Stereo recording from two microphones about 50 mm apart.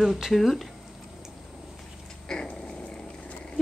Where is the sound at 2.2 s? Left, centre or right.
Centre.